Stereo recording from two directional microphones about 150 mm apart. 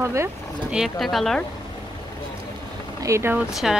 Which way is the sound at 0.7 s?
Centre (ahead or behind).